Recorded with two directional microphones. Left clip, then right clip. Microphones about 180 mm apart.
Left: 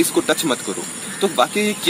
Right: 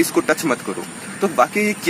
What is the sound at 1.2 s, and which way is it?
Speech, 10° left (ahead or behind).